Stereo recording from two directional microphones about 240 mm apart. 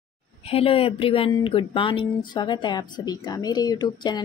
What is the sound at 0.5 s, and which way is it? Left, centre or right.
Speech, left.